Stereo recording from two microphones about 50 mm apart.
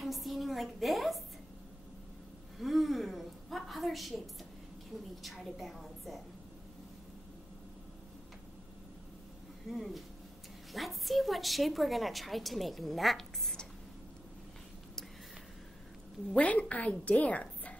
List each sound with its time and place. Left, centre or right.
0.0 s a woman's voice: centre
2.6 s a sound: centre
5.2 s a woman's voice: centre
9.7 s a woman's voice: centre
16.3 s a woman's voice: left